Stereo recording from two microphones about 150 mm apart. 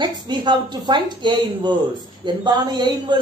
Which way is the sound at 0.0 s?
30° right (ahead or behind).